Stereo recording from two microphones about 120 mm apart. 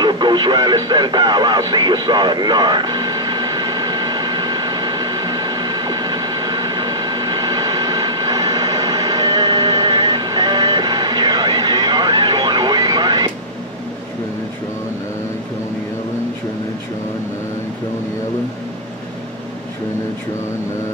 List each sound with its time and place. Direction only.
0.0 s radio: 40° right (ahead or behind)